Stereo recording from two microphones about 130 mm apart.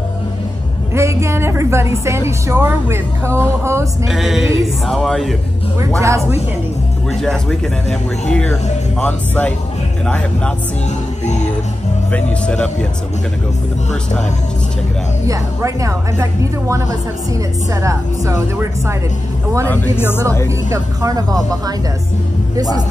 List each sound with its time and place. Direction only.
0.9 s a woman's voice: 20° right (ahead or behind)
4.1 s speech: 5° right (ahead or behind)
5.9 s a woman's voice: 25° right (ahead or behind)
7.2 s speech: 5° left (ahead or behind)
11.2 s music: 65° left (ahead or behind)
12.1 s speech: 10° left (ahead or behind)
15.2 s a woman's voice: 25° right (ahead or behind)
17.8 s a woman's voice: 25° right (ahead or behind)
19.7 s speech: 15° left (ahead or behind)
20.4 s a woman's voice: 25° right (ahead or behind)
22.6 s a woman's voice: 30° right (ahead or behind)